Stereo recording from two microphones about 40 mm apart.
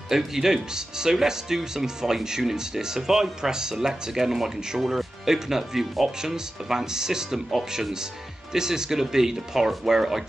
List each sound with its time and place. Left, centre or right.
0.1 s speech: centre
8.5 s speech: centre